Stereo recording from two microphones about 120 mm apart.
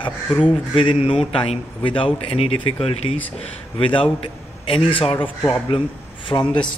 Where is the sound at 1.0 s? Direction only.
50° left (ahead or behind).